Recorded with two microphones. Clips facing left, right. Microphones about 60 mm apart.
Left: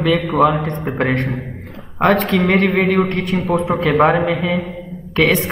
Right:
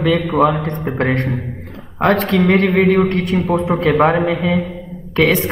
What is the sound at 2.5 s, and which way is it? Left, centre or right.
Music, centre.